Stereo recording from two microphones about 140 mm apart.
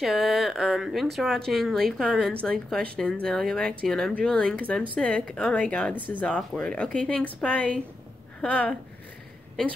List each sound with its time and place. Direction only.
0.0 s a woman's voice: centre (ahead or behind)